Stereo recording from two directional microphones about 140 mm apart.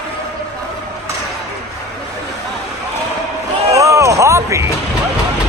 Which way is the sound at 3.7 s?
20° right (ahead or behind).